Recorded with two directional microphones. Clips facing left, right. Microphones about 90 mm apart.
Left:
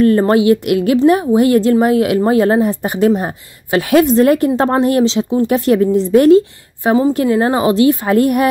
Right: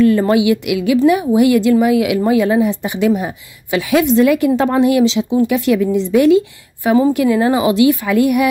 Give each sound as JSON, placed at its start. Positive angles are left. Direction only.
{"t": 0.0, "sound": "speech", "side_deg": 40}
{"t": 1.2, "sound": "a woman's voice", "side_deg": 35}